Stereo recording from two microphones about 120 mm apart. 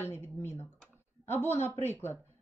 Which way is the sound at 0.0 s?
20° left (ahead or behind).